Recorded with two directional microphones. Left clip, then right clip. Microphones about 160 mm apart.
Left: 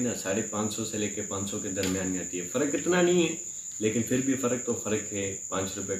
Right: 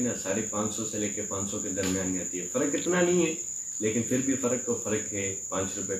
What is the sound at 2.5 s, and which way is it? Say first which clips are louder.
Speech: left 1 dB; 20° left (ahead or behind).